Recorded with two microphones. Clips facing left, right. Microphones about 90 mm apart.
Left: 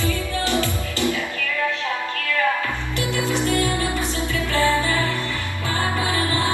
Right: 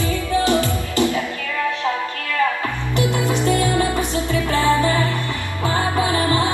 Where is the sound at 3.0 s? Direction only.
20° right (ahead or behind).